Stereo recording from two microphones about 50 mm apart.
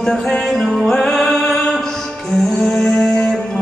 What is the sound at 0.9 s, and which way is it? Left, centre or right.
Music, centre.